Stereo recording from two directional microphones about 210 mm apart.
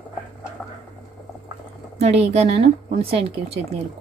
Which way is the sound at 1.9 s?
30° right (ahead or behind).